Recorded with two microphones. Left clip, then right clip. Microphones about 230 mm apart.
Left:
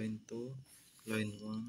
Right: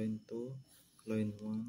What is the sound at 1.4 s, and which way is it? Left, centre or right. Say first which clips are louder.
Speech: right 2 dB; centre.